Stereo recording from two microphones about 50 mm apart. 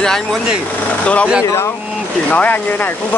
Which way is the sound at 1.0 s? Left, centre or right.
Left.